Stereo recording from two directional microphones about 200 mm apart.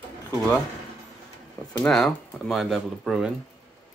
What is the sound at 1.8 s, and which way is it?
Speech, centre (ahead or behind).